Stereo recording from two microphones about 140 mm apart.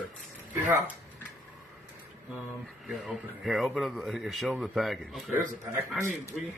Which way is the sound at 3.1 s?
Centre (ahead or behind).